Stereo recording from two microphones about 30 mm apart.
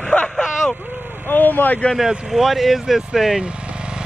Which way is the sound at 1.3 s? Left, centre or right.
Left.